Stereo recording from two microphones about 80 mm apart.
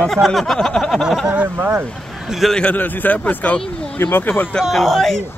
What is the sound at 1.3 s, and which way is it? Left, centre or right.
Speech, centre.